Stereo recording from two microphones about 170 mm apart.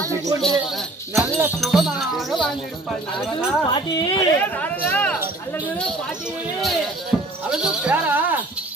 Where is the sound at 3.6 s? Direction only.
25° left (ahead or behind).